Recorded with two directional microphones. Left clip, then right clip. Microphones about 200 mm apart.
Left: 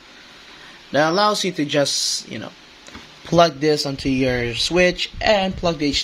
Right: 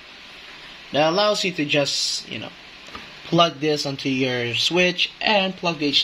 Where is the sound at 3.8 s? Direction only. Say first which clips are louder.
Left 2 dB; 20° left (ahead or behind).